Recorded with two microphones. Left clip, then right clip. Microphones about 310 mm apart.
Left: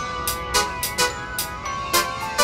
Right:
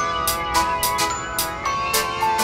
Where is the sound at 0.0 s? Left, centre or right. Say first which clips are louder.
Right 5 dB; centre.